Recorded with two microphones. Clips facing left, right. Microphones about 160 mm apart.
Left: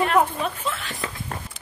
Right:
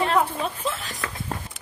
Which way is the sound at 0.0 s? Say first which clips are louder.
Left 2 dB; 30° right (ahead or behind).